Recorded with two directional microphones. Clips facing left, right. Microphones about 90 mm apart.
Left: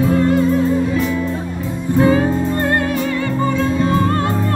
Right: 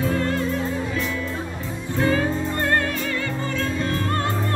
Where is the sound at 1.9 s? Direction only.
15° left (ahead or behind).